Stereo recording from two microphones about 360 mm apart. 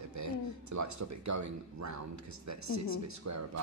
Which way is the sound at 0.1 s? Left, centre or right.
Right.